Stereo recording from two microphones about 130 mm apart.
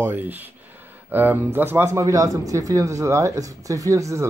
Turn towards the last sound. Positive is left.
turn(degrees=-25)  # may be behind; listen again after turning